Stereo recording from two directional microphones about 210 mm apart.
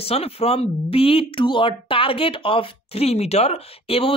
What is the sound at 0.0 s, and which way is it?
Speech, 30° left (ahead or behind).